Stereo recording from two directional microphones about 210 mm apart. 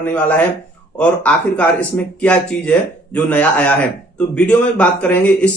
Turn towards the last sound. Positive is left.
turn(degrees=5)  # may be behind; listen again after turning